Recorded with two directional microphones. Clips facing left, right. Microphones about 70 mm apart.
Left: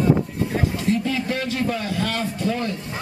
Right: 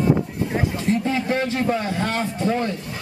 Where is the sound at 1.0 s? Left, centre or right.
Right.